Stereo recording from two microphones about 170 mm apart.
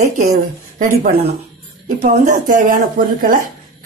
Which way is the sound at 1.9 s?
40° right (ahead or behind).